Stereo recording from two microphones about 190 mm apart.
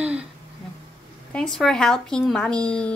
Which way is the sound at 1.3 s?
5° left (ahead or behind).